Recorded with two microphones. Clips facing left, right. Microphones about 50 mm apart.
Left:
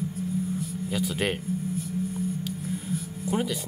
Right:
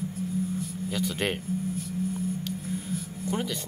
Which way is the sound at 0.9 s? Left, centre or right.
Centre.